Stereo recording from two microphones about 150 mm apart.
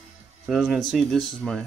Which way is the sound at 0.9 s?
5° left (ahead or behind).